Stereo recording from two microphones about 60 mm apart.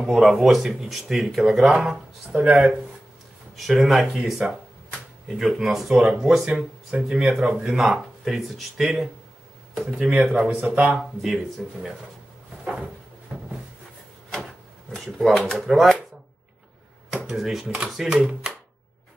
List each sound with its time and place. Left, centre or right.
0.0 s speech: centre
2.3 s speech: centre
3.5 s speech: centre; by 10.8 s right
10.8 s speech: centre
12.6 s cupboard open or close: centre
13.3 s a sound: centre
15.1 s speech: centre
17.3 s speech: centre
18.4 s a sound: centre